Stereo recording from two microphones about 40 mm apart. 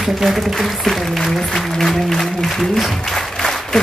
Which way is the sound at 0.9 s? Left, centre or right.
Centre.